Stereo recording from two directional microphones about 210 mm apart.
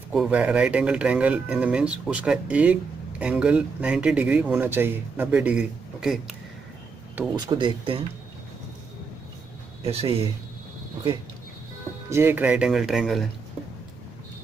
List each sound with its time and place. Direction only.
0.1 s speech: 5° right (ahead or behind)
7.3 s speech: 20° right (ahead or behind)
9.8 s speech: 30° right (ahead or behind)
12.1 s speech: 10° right (ahead or behind)